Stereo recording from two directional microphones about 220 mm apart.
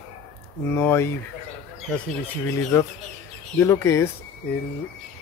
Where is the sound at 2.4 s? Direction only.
15° left (ahead or behind).